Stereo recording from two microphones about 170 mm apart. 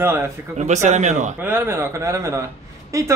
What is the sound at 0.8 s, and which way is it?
Speech, 45° right (ahead or behind).